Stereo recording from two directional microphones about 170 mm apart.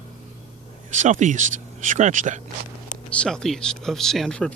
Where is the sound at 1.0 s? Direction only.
45° right (ahead or behind).